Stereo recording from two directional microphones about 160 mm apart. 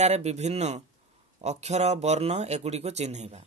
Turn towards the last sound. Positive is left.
turn(degrees=-45)  # may be behind; listen again after turning